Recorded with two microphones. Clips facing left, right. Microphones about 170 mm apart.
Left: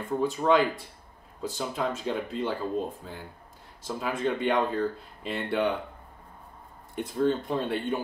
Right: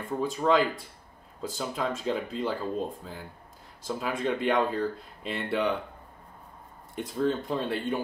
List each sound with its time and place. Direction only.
0.2 s speech: centre (ahead or behind)
7.0 s speech: centre (ahead or behind)